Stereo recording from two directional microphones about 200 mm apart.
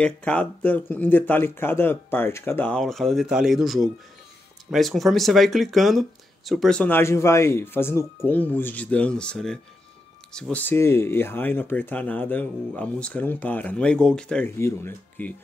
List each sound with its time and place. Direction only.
0.0 s speech: 5° left (ahead or behind)